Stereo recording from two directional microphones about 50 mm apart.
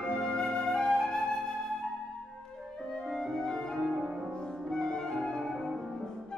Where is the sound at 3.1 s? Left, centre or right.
Centre.